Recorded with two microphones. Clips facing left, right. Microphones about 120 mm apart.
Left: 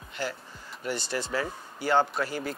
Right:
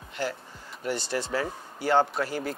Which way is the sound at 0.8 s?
40° right (ahead or behind).